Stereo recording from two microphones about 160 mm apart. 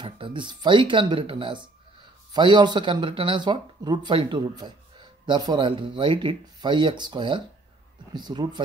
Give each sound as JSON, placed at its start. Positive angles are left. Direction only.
{"t": 0.0, "sound": "speech", "side_deg": -30}